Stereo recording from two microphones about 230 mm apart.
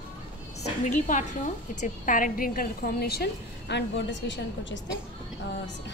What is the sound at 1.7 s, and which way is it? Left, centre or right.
A woman's voice, left.